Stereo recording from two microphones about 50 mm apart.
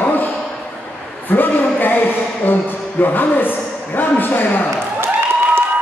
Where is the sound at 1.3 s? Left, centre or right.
Left.